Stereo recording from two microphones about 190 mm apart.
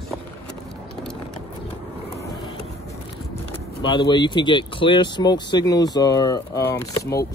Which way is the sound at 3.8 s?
25° left (ahead or behind).